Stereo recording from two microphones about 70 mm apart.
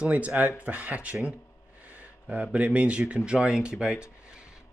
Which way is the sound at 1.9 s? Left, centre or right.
Right.